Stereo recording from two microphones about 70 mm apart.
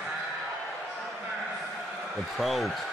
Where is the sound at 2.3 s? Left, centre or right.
Centre.